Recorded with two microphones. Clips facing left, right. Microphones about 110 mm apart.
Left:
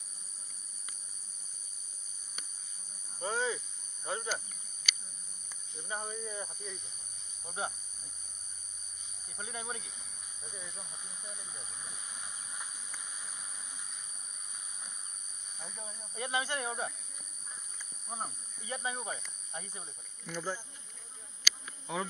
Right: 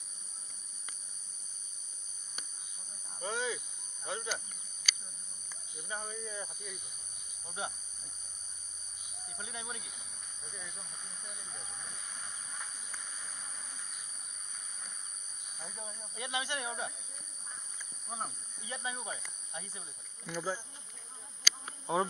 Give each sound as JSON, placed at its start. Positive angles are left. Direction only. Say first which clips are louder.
{"t": 3.2, "sound": "cricket", "louder": "left 2 dB", "side_deg": 35}
{"t": 5.9, "sound": "speech", "louder": "left 2 dB", "side_deg": 35}
{"t": 9.4, "sound": "speech", "louder": "left 3 dB", "side_deg": 40}
{"t": 11.8, "sound": "hiss", "louder": "even", "side_deg": 10}
{"t": 15.6, "sound": "speech", "louder": "right 1 dB", "side_deg": 0}
{"t": 16.2, "sound": "speech", "louder": "left 3 dB", "side_deg": 35}
{"t": 18.0, "sound": "speech", "louder": "even", "side_deg": 0}
{"t": 18.7, "sound": "speech", "louder": "left 3 dB", "side_deg": 35}
{"t": 20.2, "sound": "speech", "louder": "right 1 dB", "side_deg": -5}
{"t": 21.9, "sound": "insect", "louder": "right 5 dB", "side_deg": -30}